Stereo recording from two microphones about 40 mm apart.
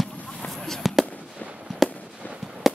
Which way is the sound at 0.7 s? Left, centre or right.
Centre.